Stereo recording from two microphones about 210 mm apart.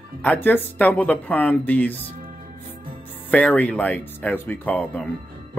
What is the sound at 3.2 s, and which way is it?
Speech, 5° left (ahead or behind).